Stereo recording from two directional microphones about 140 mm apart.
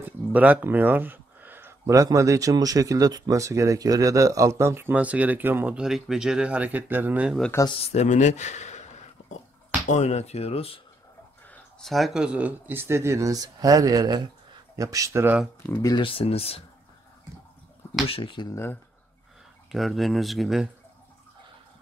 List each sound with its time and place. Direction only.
0.0 s speech: 10° right (ahead or behind)
7.8 s speech: 50° left (ahead or behind)
11.4 s a sound: 10° left (ahead or behind)
11.9 s speech: centre (ahead or behind); by 15.3 s 20° right (ahead or behind)
15.7 s speech: 25° left (ahead or behind)
16.1 s speech: 45° left (ahead or behind)
18.0 s speech: 40° left (ahead or behind)
18.5 s speech: 15° left (ahead or behind)
19.7 s speech: centre (ahead or behind)